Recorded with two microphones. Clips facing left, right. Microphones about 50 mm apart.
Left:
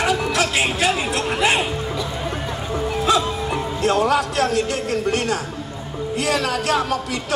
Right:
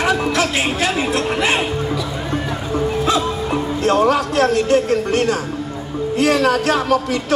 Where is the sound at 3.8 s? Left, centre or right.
Right.